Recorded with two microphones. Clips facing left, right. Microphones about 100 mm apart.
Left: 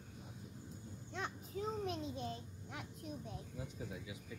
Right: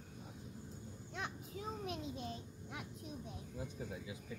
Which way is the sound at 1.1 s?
10° right (ahead or behind).